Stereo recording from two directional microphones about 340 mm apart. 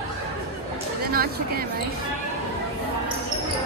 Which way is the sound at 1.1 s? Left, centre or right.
Right.